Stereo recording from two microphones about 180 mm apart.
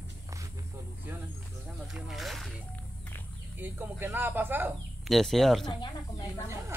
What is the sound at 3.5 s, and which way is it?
Speech, 10° right (ahead or behind).